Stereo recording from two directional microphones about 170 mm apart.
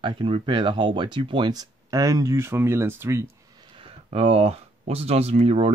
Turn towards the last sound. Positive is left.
turn(degrees=-35)  # may be behind; listen again after turning